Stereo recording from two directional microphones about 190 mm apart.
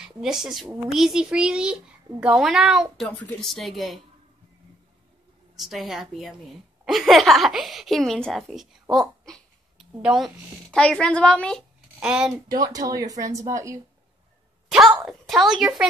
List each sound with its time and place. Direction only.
0.0 s a woman's voice: 5° right (ahead or behind)
5.6 s a woman's voice: centre (ahead or behind)
12.4 s speech: 20° right (ahead or behind)
14.7 s speech: centre (ahead or behind)